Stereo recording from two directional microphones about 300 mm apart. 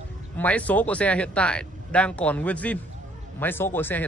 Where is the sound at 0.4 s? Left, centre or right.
Centre.